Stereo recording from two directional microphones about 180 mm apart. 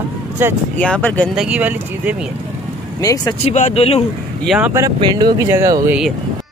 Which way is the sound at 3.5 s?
40° left (ahead or behind).